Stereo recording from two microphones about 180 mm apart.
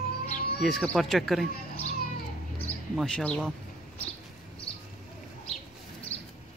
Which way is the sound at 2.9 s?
5° left (ahead or behind).